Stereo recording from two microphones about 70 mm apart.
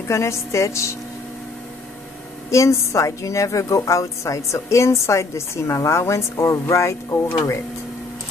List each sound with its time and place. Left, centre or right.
0.1 s a woman's voice: left
2.5 s a woman's voice: left